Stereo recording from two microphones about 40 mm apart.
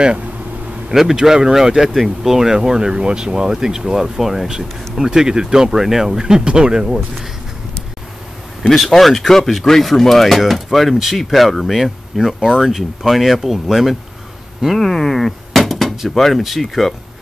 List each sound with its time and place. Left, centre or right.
0.9 s speech: centre
8.6 s speech: centre
12.2 s speech: centre
14.8 s a sound: centre
16.2 s speech: centre